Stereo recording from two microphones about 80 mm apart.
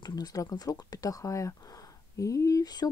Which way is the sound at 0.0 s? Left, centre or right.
Left.